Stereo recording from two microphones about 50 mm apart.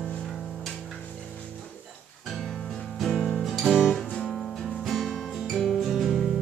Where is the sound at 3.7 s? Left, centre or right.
Left.